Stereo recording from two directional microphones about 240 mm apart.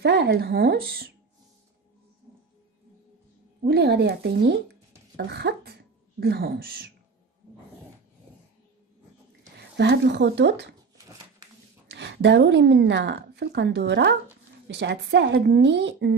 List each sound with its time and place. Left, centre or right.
0.0 s speech: right
3.6 s a woman's voice: right
9.6 s speech: right
11.9 s a woman's voice: right